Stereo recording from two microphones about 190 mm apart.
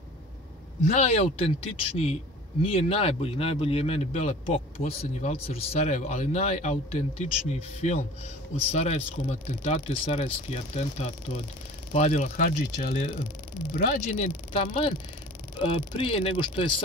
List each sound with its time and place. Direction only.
0.8 s a man's voice: 35° left (ahead or behind)